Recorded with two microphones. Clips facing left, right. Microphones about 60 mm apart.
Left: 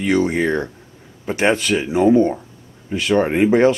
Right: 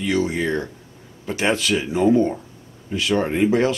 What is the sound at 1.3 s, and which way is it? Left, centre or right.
Speech, left.